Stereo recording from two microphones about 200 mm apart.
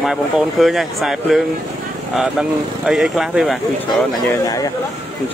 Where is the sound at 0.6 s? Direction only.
Centre (ahead or behind).